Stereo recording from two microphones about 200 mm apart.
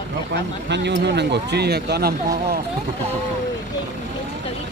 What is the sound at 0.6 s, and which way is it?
Speech, 60° right (ahead or behind).